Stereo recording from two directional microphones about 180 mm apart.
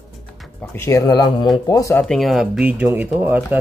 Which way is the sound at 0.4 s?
10° left (ahead or behind).